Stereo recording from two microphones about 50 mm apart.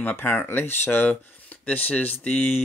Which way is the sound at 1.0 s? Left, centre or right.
Left.